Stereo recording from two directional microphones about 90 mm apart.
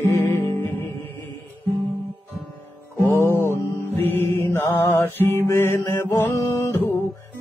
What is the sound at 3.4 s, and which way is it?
Music, 25° left (ahead or behind).